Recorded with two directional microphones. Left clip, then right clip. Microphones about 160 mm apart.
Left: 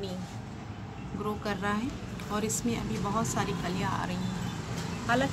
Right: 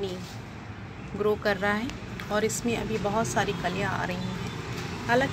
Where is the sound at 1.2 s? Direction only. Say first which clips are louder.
Right 7 dB; 25° right (ahead or behind).